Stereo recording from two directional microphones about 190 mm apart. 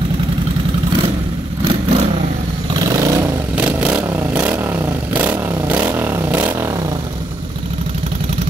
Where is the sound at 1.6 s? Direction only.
30° right (ahead or behind).